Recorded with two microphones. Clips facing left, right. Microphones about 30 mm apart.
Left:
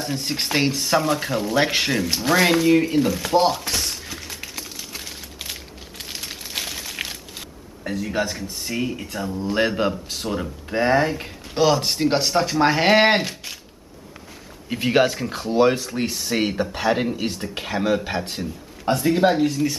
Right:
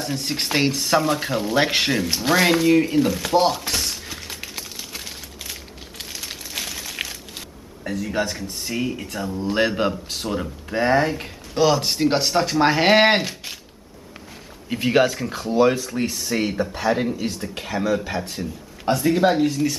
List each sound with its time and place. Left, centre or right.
0.0 s speech: centre
2.2 s a sound: centre
6.6 s a sound: centre
8.1 s speech: centre
14.7 s speech: centre
15.4 s speech: left
17.2 s speech: left
18.4 s speech: centre